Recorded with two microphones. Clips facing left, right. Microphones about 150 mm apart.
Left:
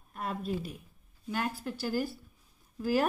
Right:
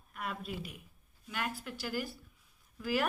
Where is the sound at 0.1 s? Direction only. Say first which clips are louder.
Left 4 dB; 35° left (ahead or behind).